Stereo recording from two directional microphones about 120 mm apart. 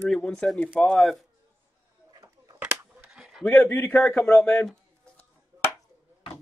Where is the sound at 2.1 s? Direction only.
35° right (ahead or behind).